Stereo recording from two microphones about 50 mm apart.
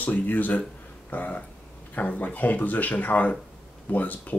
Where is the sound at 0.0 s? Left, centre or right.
Left.